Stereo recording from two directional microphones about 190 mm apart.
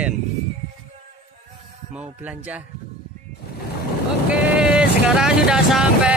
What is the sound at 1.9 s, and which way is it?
Speech, 5° right (ahead or behind).